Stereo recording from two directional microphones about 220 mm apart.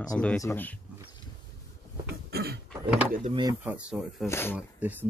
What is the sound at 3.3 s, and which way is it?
Speech, 20° right (ahead or behind).